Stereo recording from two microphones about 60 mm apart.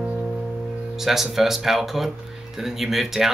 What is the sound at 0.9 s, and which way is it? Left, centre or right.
Speech, centre.